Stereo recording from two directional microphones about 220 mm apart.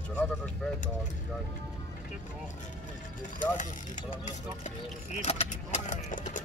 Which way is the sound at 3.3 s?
35° left (ahead or behind).